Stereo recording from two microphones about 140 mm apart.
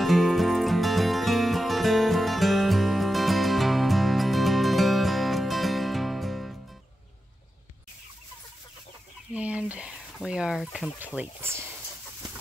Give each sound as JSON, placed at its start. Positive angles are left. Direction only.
{"t": 0.0, "sound": "music", "side_deg": 0}
{"t": 9.3, "sound": "a sound", "side_deg": -10}
{"t": 11.1, "sound": "speech", "side_deg": -15}